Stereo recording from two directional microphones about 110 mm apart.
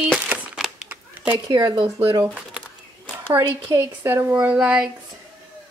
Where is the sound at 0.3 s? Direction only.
20° right (ahead or behind).